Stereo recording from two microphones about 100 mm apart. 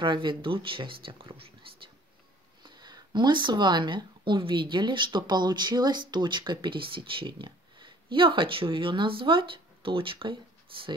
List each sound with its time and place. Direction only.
0.0 s speech: 55° right (ahead or behind)
2.6 s speech: 45° right (ahead or behind)